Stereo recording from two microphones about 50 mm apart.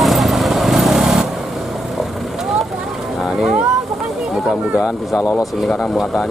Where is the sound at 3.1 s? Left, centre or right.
Centre.